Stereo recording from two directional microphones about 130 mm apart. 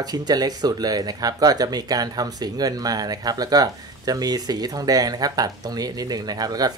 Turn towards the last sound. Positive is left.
turn(degrees=-30)  # may be behind; listen again after turning